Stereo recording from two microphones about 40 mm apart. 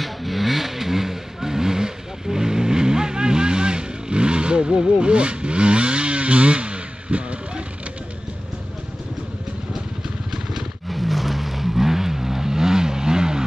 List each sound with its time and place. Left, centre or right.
0.0 s vehicle: centre
5.0 s chainsaw: right
10.0 s vehicle: centre
10.9 s vehicle: centre